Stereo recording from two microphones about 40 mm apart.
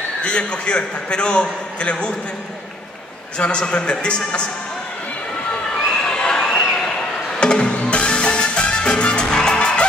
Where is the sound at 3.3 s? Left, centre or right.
Left.